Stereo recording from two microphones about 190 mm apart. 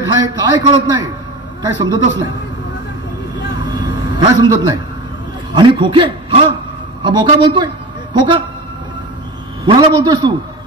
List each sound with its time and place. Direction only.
0.0 s a man's voice: 20° right (ahead or behind)
3.8 s a sound: 20° right (ahead or behind)
5.5 s a man's voice: 25° right (ahead or behind)
9.7 s a man's voice: 25° right (ahead or behind)